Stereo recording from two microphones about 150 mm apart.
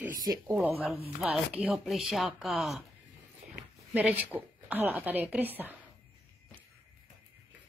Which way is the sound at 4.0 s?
10° right (ahead or behind).